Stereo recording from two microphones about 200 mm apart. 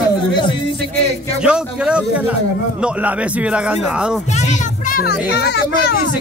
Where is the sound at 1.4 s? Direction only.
5° right (ahead or behind).